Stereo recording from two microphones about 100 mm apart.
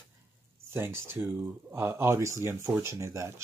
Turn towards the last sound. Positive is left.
turn(degrees=-30)  # may be behind; listen again after turning